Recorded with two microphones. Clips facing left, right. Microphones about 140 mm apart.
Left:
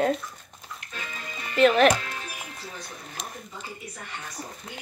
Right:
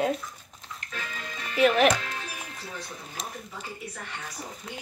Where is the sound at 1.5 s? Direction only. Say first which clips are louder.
Left 2 dB; 15° right (ahead or behind).